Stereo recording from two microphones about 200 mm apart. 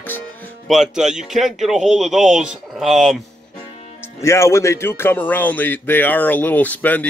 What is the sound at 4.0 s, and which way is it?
Speech, 15° left (ahead or behind).